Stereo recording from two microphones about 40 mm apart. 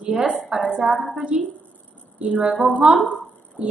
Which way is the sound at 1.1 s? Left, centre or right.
Right.